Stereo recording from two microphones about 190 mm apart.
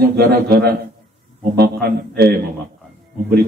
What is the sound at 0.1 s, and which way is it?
A man's voice, 55° right (ahead or behind).